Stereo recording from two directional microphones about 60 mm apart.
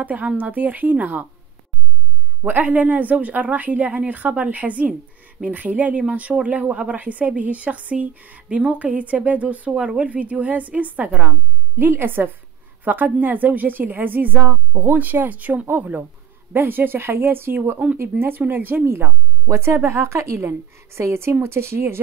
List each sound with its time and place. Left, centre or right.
0.0 s speech: right
2.4 s speech: right
11.7 s a woman's voice: right
19.4 s a woman's voice: right